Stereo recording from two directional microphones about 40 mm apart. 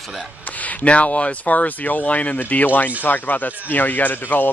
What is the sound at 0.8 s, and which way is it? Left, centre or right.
Speech, left.